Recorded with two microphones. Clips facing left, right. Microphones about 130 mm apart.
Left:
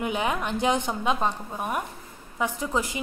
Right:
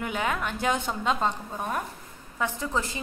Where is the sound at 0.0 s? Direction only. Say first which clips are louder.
Left 2 dB; 20° left (ahead or behind).